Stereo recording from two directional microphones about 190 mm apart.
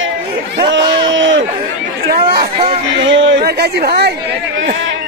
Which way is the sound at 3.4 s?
55° right (ahead or behind).